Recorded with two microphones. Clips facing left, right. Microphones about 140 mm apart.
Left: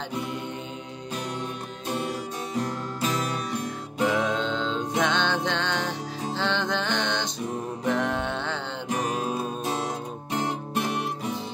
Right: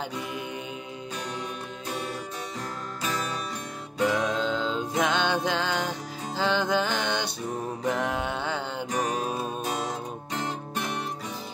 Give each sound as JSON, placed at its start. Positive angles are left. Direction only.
{"t": 3.0, "sound": "music", "side_deg": 15}
{"t": 4.1, "sound": "music", "side_deg": 0}
{"t": 10.3, "sound": "music", "side_deg": 15}